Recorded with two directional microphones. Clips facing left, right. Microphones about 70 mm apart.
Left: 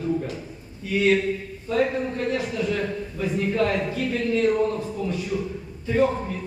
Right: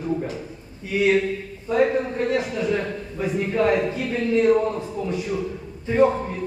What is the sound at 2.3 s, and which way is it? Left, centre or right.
A man's voice, right.